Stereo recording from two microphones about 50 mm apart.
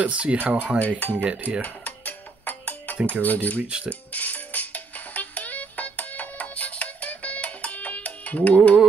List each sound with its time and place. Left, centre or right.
0.0 s speech: right
0.4 s dishes: right
0.7 s speech: left
1.1 s speech: right
1.6 s music: left
3.1 s speech: left
3.6 s speech: right
4.1 s music: left